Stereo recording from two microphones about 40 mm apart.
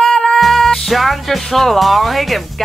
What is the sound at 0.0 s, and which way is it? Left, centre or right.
Music, centre.